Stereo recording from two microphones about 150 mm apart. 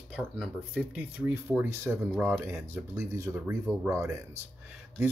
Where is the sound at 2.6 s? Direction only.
15° right (ahead or behind).